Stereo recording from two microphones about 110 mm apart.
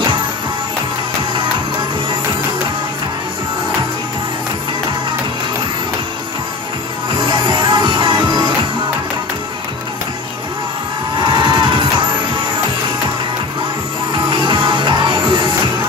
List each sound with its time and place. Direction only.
7.2 s music: 45° right (ahead or behind)
11.2 s music: 45° right (ahead or behind)
14.3 s music: 45° right (ahead or behind)